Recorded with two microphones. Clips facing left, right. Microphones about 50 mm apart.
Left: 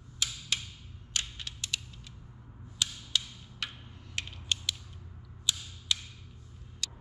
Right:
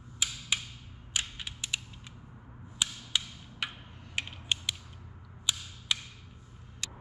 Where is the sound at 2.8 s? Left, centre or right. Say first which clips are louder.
Even; centre.